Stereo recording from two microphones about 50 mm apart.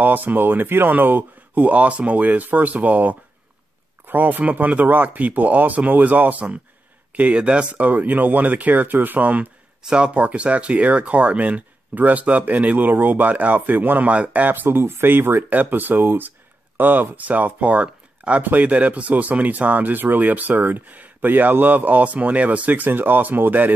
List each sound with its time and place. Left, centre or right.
0.0 s speech: right
9.8 s speech: centre
17.8 s a sound: right
18.4 s speech: right